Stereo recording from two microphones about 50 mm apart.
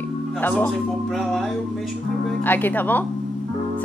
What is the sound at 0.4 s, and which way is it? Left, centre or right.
Speech, left.